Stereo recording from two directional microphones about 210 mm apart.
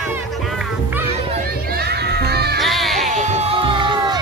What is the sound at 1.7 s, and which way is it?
Music, 50° right (ahead or behind).